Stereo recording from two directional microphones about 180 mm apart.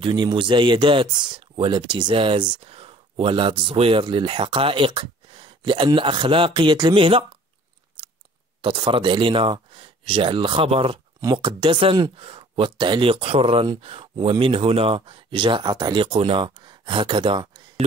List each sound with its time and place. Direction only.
0.0 s speech: 25° right (ahead or behind)
8.6 s speech: 30° right (ahead or behind)